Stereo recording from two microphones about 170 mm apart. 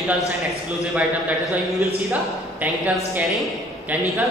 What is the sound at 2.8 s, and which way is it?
Speech, 10° right (ahead or behind).